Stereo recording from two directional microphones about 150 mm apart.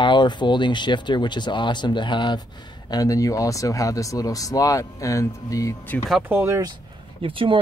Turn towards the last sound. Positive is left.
turn(degrees=-35)  # may be behind; listen again after turning